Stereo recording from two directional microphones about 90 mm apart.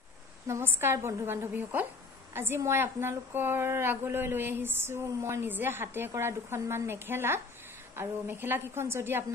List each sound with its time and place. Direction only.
0.5 s a woman's voice: 30° right (ahead or behind)